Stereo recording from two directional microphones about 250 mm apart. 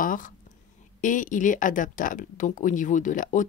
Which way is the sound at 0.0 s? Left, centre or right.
Left.